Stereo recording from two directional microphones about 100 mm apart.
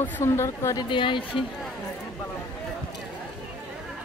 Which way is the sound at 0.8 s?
55° left (ahead or behind).